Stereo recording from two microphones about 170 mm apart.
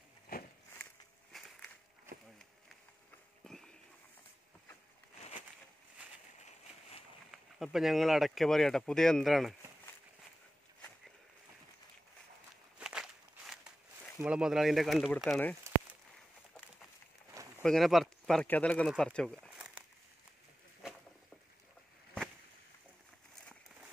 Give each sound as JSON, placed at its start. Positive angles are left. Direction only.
{"t": 1.3, "sound": "a sound", "side_deg": 0}
{"t": 3.4, "sound": "walk", "side_deg": 5}
{"t": 6.4, "sound": "a sound", "side_deg": 35}
{"t": 7.2, "sound": "speech", "side_deg": 0}
{"t": 12.7, "sound": "walk", "side_deg": -5}
{"t": 14.2, "sound": "speech", "side_deg": -5}
{"t": 17.3, "sound": "a sound", "side_deg": -20}
{"t": 17.6, "sound": "speech", "side_deg": 0}
{"t": 19.4, "sound": "crumpling", "side_deg": -5}